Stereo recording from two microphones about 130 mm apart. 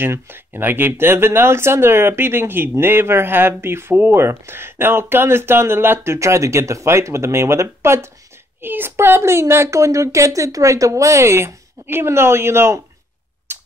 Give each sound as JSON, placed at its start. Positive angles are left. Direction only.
{"t": 0.0, "sound": "speech", "side_deg": -15}
{"t": 13.5, "sound": "tick-tock", "side_deg": -20}